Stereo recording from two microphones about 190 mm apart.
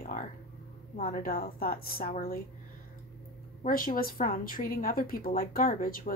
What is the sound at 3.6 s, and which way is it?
A woman's voice, 45° left (ahead or behind).